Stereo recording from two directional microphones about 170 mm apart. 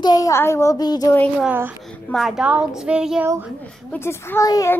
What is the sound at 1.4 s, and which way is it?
Speech, 10° right (ahead or behind).